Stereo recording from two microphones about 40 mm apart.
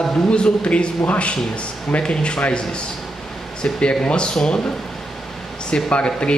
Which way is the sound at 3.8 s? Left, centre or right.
Left.